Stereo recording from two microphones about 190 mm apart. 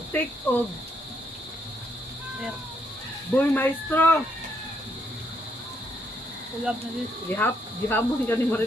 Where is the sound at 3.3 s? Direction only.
10° left (ahead or behind).